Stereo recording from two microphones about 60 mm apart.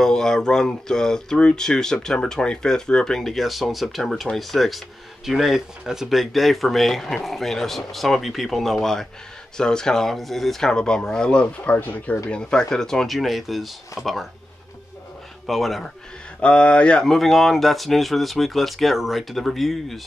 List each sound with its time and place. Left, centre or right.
0.0 s speech: centre
10.7 s speech: centre
11.6 s speech: left
12.3 s speech: centre
15.4 s speech: centre
16.3 s speech: centre
17.0 s speech: centre